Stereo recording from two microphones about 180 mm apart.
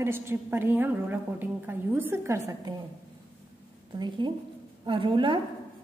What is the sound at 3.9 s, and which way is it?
A woman's voice, 25° right (ahead or behind).